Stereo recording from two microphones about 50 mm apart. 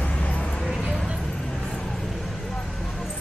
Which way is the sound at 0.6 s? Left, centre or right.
Centre.